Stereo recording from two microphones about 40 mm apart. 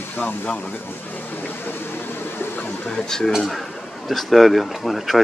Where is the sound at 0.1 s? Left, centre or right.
Left.